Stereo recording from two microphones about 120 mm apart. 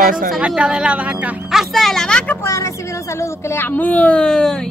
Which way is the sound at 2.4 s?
25° left (ahead or behind).